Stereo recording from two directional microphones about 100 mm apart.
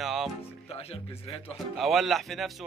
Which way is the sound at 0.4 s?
80° left.